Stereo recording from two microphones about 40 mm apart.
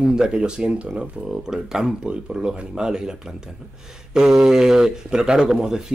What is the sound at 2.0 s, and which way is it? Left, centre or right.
Speech, right.